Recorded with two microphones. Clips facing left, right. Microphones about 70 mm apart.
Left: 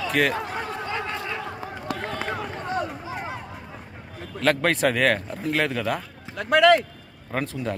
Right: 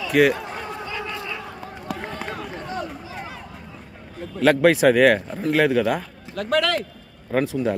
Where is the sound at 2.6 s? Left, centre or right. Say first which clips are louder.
Left 3 dB; left.